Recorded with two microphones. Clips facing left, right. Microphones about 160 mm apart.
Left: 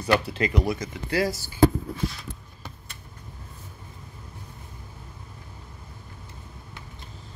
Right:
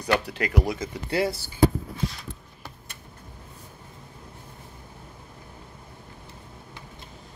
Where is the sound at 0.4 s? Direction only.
10° right (ahead or behind).